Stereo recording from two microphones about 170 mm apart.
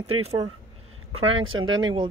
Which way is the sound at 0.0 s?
35° right (ahead or behind).